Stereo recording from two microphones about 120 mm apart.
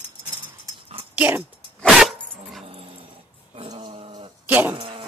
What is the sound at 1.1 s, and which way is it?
Speech, 15° right (ahead or behind).